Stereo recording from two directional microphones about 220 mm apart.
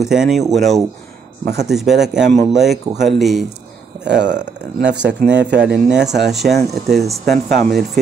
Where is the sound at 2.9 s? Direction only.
20° right (ahead or behind).